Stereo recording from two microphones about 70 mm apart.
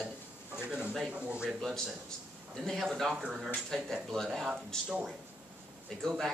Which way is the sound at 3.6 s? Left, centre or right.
Centre.